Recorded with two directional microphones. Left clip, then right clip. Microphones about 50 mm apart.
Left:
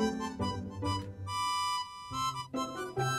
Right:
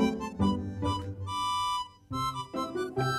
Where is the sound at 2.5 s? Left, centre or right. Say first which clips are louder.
Right 3 dB; right.